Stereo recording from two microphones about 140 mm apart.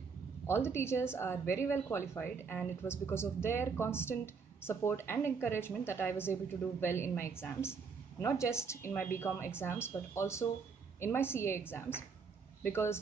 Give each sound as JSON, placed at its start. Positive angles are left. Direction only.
{"t": 0.5, "sound": "a woman's voice", "side_deg": 15}